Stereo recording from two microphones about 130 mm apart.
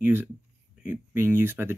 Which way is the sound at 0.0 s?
15° right (ahead or behind).